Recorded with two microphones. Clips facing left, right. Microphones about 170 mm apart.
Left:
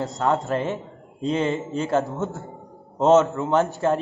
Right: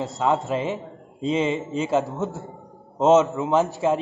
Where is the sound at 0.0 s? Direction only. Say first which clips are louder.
Even; centre (ahead or behind).